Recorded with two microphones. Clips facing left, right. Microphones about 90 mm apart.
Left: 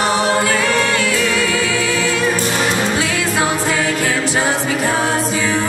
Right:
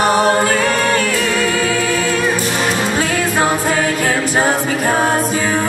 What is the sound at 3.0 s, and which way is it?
A capella, 45° right (ahead or behind).